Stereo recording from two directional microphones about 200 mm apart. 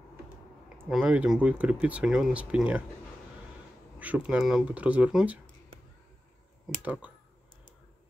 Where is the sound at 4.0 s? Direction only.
5° right (ahead or behind).